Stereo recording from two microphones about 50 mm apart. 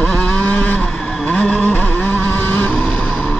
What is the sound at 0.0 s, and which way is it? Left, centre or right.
Vehicle, centre.